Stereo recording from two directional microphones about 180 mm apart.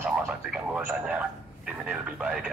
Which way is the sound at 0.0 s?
5° right (ahead or behind).